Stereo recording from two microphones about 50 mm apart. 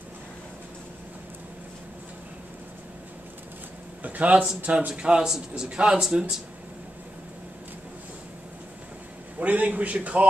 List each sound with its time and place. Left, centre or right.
4.0 s speech: right; by 6.3 s centre
9.4 s a man's voice: right